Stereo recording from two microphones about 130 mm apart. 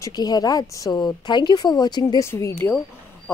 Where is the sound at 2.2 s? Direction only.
20° left (ahead or behind).